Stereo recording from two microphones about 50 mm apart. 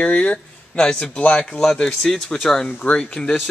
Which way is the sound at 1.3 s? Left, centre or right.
Centre.